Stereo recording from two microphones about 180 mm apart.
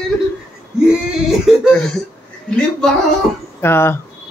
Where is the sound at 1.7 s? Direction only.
5° left (ahead or behind).